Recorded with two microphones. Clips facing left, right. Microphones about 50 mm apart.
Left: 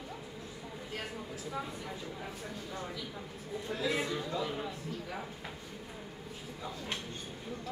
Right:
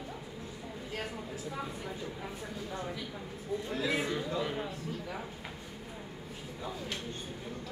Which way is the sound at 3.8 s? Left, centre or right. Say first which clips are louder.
Even; centre.